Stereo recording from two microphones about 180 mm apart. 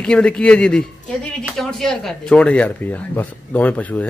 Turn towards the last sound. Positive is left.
turn(degrees=10)  # may be behind; listen again after turning